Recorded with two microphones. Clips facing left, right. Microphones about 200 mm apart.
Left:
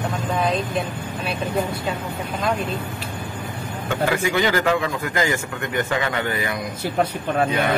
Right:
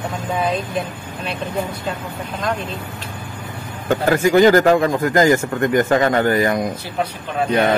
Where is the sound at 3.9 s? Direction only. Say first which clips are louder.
Right 7 dB; 45° right (ahead or behind).